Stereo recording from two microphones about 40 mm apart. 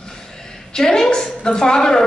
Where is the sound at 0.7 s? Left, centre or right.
Centre.